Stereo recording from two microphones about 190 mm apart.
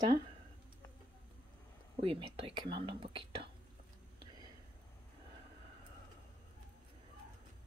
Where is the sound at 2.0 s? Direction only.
30° right (ahead or behind).